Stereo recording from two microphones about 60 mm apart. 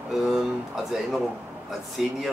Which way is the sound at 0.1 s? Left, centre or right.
Centre.